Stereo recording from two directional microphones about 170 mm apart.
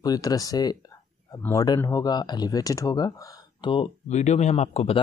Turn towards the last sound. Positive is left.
turn(degrees=40)  # may be behind; listen again after turning